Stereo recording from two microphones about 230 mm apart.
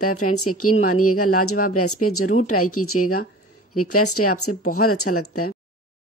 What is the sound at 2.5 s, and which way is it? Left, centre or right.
Speech, left.